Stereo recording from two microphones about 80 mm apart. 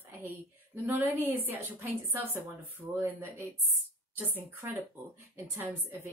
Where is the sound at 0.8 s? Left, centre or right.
Right.